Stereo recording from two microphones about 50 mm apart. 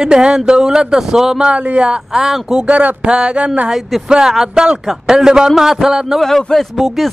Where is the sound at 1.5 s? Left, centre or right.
Right.